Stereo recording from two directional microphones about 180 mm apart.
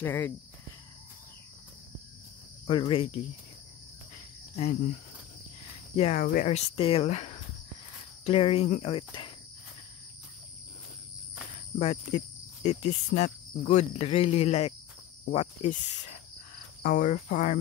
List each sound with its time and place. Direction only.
0.0 s speech: 15° left (ahead or behind)
2.6 s speech: 30° left (ahead or behind)
5.9 s cricket: 35° left (ahead or behind)
11.8 s cricket: 35° left (ahead or behind)